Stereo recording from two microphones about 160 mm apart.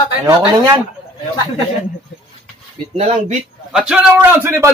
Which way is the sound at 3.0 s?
45° right (ahead or behind).